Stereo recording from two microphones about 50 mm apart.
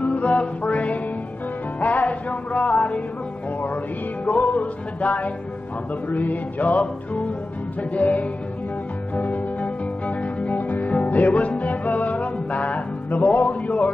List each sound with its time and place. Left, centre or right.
0.0 s music: left
4.3 s music: left